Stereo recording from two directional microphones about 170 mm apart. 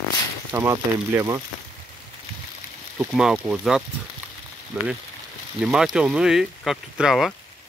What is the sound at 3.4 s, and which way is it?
Speech, 5° right (ahead or behind).